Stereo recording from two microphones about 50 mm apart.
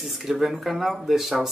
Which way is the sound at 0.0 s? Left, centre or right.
Centre.